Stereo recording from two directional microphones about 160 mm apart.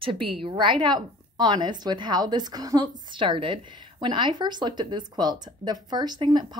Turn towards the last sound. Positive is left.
turn(degrees=-25)  # may be behind; listen again after turning